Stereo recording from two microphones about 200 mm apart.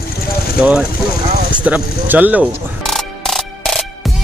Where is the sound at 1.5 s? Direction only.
5° right (ahead or behind).